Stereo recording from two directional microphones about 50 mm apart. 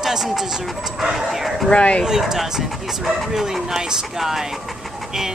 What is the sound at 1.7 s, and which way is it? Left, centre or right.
Speech, left.